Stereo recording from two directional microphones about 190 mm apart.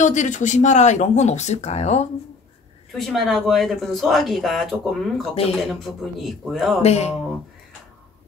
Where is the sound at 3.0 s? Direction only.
Centre (ahead or behind).